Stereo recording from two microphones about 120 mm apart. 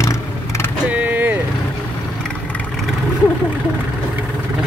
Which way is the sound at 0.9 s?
15° right (ahead or behind).